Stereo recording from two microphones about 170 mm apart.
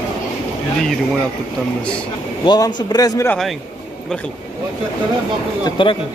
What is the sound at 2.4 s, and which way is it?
Speech, 25° left (ahead or behind).